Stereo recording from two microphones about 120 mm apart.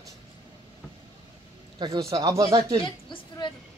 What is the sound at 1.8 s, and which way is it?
Speech, 30° right (ahead or behind).